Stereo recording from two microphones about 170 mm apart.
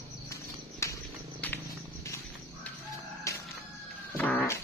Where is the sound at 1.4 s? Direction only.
10° left (ahead or behind).